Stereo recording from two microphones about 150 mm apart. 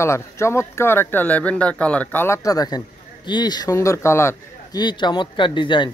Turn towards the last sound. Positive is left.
turn(degrees=30)  # may be behind; listen again after turning